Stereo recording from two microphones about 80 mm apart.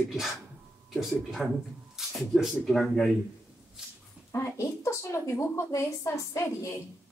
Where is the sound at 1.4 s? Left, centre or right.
Centre.